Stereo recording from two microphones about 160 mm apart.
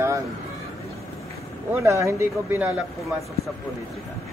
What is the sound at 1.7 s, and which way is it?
Speech, 20° right (ahead or behind).